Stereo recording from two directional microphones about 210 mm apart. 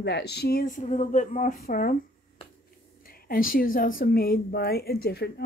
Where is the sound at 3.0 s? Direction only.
45° left (ahead or behind).